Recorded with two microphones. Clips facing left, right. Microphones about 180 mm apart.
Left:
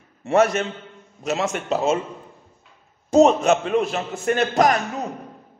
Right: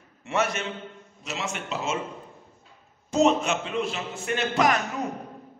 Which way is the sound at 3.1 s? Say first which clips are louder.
Left 7 dB; 40° left (ahead or behind).